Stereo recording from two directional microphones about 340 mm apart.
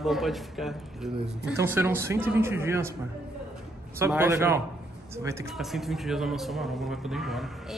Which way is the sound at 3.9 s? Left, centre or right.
Centre.